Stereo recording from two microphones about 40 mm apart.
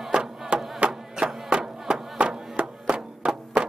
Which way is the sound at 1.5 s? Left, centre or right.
Centre.